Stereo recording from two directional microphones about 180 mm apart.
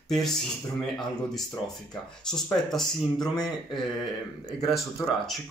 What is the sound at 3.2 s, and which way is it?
Speech, 20° left (ahead or behind).